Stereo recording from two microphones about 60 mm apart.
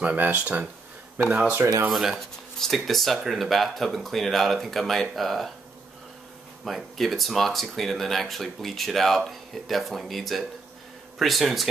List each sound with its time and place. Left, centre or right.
0.0 s speech: right
1.9 s speech: centre
6.6 s speech: centre